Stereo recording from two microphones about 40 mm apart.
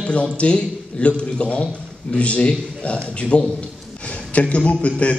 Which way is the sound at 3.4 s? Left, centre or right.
Left.